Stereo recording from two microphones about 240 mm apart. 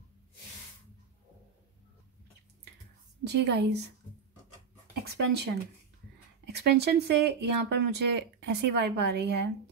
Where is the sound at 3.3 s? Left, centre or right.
Right.